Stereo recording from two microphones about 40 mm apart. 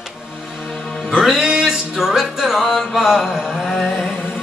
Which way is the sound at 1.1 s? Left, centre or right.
Centre.